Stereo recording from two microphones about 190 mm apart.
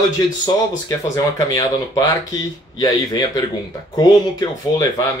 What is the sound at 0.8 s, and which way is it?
Speech, 15° left (ahead or behind).